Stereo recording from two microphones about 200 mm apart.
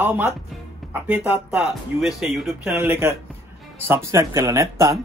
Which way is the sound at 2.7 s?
10° right (ahead or behind).